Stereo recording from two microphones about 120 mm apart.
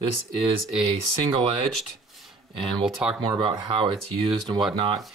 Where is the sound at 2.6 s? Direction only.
5° right (ahead or behind).